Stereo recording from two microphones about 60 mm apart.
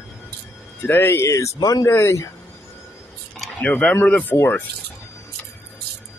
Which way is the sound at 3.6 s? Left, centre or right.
Centre.